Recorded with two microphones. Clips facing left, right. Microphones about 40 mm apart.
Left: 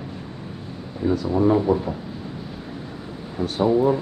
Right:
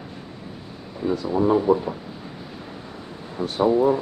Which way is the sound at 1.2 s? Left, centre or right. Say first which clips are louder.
Right 1 dB; centre.